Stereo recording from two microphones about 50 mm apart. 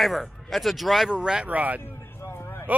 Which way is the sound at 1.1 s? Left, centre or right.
Centre.